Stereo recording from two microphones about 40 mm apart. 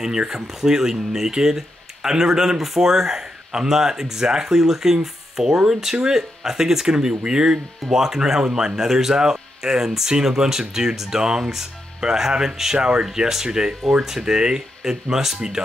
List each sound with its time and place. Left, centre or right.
0.0 s speech: centre